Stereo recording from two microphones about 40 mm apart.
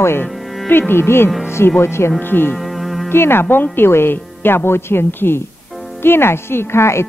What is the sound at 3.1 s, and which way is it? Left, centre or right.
Speech, left.